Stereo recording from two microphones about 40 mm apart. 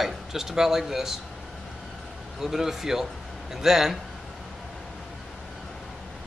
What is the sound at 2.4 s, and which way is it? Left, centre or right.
Speech, centre.